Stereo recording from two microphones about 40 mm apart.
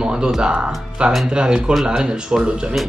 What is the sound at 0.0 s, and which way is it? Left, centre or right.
Music, right.